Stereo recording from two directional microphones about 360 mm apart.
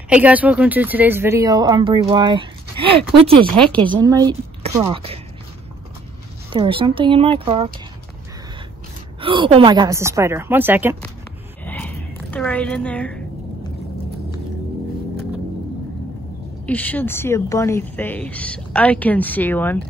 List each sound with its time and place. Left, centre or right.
0.1 s speech: centre
3.5 s speech: centre
3.8 s a woman's voice: centre
6.5 s speech: centre
9.2 s speech: centre
11.6 s a sound: centre
16.6 s speech: centre